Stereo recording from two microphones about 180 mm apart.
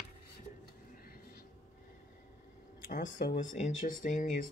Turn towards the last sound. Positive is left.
turn(degrees=45)  # may be behind; listen again after turning